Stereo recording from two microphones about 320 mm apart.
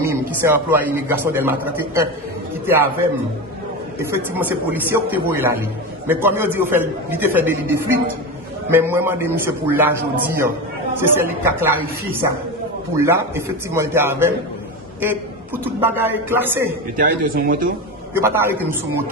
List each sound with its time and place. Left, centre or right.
0.0 s a man's voice: centre
16.9 s a man's voice: right
18.1 s a man's voice: centre